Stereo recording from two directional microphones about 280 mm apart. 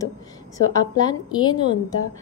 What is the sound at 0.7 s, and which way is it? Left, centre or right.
Speech, centre.